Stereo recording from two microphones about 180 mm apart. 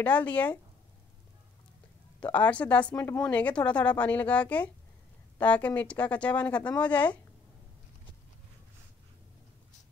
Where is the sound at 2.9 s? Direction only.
20° left (ahead or behind).